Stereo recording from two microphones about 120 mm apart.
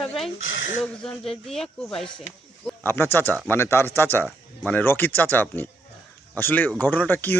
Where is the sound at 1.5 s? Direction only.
5° left (ahead or behind).